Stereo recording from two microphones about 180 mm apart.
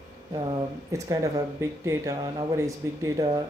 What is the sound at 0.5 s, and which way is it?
Speech, 20° right (ahead or behind).